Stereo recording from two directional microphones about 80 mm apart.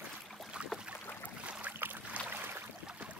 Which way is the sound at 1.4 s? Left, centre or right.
Centre.